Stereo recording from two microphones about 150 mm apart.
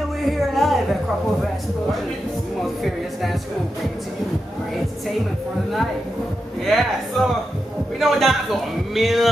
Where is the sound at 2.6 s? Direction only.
Centre (ahead or behind).